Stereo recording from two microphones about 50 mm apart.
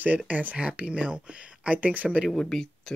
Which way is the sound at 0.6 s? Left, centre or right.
Right.